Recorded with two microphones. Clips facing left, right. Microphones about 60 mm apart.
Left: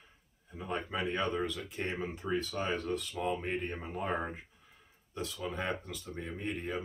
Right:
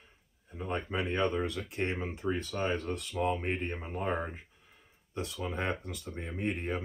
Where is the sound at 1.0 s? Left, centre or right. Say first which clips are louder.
Right 3 dB; right.